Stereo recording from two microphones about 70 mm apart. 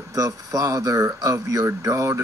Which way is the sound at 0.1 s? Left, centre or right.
Right.